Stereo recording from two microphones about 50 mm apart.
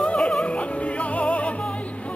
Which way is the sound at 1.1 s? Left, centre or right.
Left.